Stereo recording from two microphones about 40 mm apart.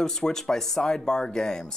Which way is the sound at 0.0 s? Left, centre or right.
Centre.